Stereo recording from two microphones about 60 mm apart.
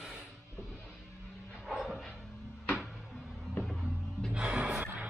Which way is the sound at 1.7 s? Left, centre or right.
Centre.